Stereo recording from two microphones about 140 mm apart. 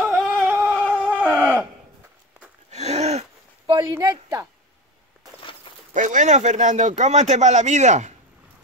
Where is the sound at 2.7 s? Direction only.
50° right (ahead or behind).